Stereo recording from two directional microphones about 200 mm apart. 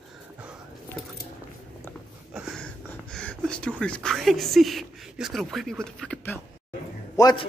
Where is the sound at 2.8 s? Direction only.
5° left (ahead or behind).